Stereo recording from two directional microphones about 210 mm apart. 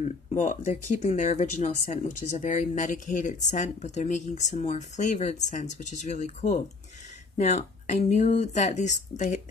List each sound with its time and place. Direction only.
0.0 s speech: 35° left (ahead or behind)